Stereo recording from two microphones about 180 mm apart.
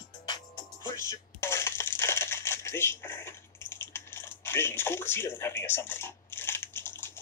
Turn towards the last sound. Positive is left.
turn(degrees=15)  # may be behind; listen again after turning